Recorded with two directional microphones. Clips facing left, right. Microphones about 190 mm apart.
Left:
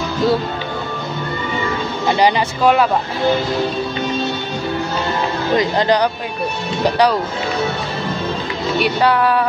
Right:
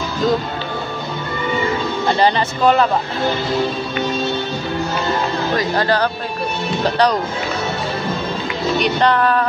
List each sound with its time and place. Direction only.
2.0 s speech: 10° left (ahead or behind)
5.5 s speech: 20° left (ahead or behind)
8.7 s speech: 5° left (ahead or behind)